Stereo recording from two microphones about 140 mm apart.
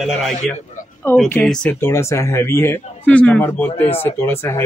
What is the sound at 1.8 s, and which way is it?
Speech, 20° left (ahead or behind).